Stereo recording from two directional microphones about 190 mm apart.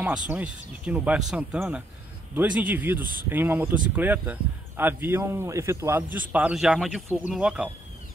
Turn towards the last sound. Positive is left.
turn(degrees=-5)  # may be behind; listen again after turning